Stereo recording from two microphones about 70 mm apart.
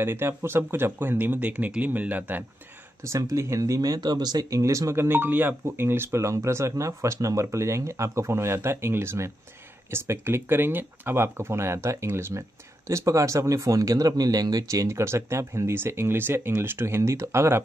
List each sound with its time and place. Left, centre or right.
0.0 s speech: right
3.1 s speech: right
4.6 s speech: right